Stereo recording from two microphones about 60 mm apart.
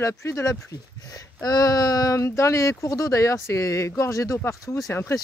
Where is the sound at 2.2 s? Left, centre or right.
Left.